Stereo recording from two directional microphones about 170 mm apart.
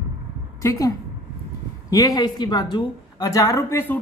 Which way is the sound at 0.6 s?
20° left (ahead or behind).